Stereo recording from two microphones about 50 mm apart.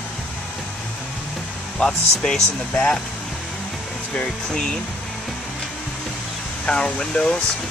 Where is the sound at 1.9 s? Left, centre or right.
Centre.